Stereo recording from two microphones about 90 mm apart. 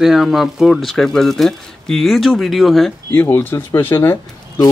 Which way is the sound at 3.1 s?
25° left (ahead or behind).